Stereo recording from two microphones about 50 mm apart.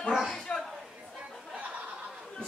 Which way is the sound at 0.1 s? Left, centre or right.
Centre.